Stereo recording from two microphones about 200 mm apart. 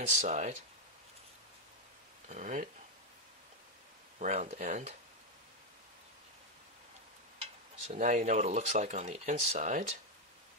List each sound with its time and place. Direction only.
0.1 s speech: 35° right (ahead or behind)
2.2 s speech: 35° right (ahead or behind)
4.2 s speech: 35° right (ahead or behind)
7.8 s speech: 35° right (ahead or behind)